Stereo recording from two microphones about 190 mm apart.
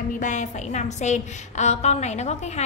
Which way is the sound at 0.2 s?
40° left (ahead or behind).